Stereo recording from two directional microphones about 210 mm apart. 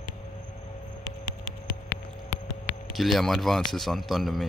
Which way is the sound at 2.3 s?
35° left (ahead or behind).